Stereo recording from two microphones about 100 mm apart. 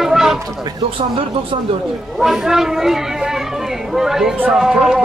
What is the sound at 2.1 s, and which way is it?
A man's voice, 5° right (ahead or behind).